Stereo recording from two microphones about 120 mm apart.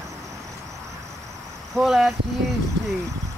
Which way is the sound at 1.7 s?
Centre (ahead or behind).